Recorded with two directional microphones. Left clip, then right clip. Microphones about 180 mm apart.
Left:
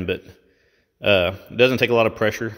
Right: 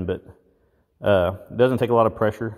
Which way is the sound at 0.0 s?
15° left (ahead or behind).